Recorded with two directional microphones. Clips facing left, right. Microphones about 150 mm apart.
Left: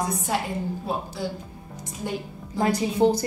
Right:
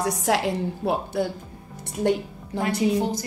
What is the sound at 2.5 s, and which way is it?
Speech, 65° right (ahead or behind).